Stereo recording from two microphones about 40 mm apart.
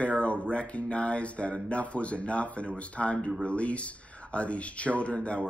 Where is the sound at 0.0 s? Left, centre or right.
Left.